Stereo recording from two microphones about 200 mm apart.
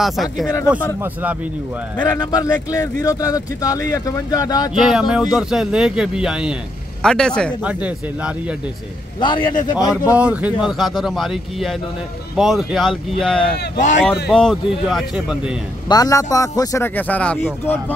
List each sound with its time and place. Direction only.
0.0 s speech: centre (ahead or behind)
2.0 s speech: 20° left (ahead or behind)
4.7 s speech: centre (ahead or behind)
7.6 s speech: 5° right (ahead or behind)
9.2 s a man's voice: 25° left (ahead or behind)
9.8 s speech: 5° right (ahead or behind)
15.9 s speech: 15° left (ahead or behind)